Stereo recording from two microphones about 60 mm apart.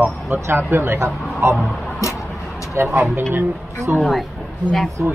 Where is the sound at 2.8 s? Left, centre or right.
Right.